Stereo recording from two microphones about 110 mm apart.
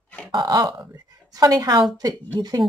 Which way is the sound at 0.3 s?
35° right (ahead or behind).